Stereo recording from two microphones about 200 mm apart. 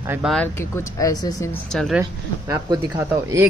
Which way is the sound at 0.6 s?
15° left (ahead or behind).